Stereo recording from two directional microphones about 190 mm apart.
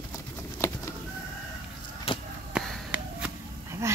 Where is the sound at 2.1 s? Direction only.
30° left (ahead or behind).